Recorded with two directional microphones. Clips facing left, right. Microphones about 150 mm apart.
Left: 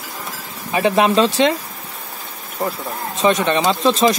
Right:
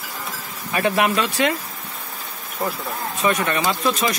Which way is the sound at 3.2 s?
25° left (ahead or behind).